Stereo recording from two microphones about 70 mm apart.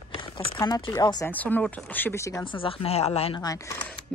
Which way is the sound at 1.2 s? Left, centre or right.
Left.